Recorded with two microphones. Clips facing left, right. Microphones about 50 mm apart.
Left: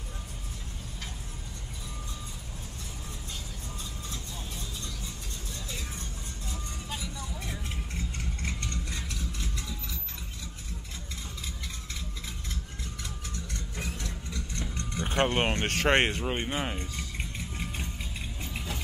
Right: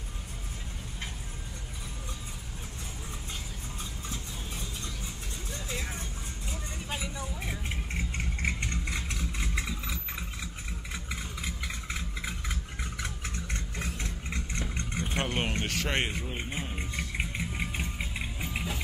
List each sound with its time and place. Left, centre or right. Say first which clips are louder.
4.1 s vehicle: right 1 dB; right
11.4 s vehicle: right 4 dB; right
14.6 s vehicle: left 2 dB; right
15.0 s a sound: left 6 dB; left
16.1 s speech: left 5 dB; left
17.2 s music: right 4 dB; right
17.9 s vehicle: right 3 dB; right